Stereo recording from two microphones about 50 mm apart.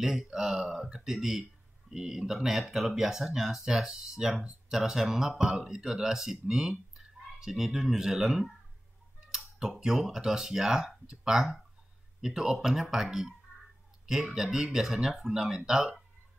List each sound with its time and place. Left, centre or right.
0.2 s speech: centre
14.3 s speech: centre